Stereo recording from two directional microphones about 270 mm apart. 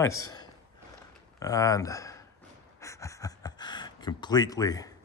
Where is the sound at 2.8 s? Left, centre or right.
Centre.